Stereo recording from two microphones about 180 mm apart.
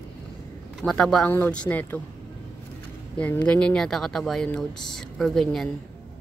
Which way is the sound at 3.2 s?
10° left (ahead or behind).